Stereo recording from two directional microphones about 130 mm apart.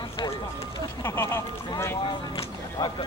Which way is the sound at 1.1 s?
20° left (ahead or behind).